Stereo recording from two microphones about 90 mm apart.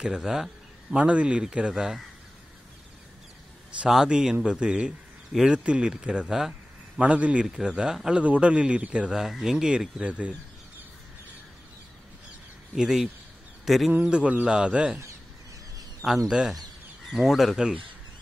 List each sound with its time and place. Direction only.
0.0 s a man's voice: 5° right (ahead or behind)
3.8 s a man's voice: 5° right (ahead or behind)
12.7 s speech: 5° right (ahead or behind)
14.0 s a man's voice: 10° right (ahead or behind)
16.3 s a man's voice: 10° right (ahead or behind)